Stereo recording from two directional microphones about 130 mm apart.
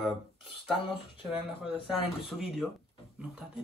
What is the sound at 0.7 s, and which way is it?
Speech, 40° left (ahead or behind).